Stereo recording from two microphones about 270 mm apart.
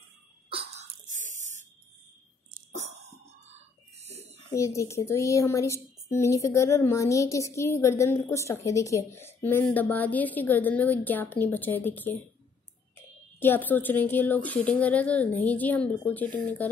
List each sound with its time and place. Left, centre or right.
0.5 s a sound: right
2.5 s cough: right
3.4 s music: right
4.6 s a woman's voice: centre